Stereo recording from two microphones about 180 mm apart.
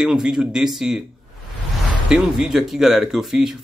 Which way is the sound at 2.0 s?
5° right (ahead or behind).